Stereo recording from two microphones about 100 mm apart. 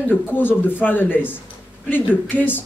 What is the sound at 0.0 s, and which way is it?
A woman's voice, 20° left (ahead or behind).